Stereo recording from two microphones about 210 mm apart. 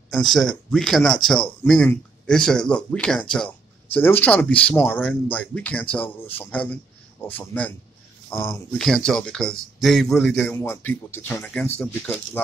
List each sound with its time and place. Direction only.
0.1 s speech: centre (ahead or behind)